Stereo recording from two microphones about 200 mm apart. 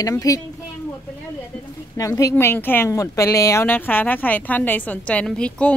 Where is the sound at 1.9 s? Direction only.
15° left (ahead or behind).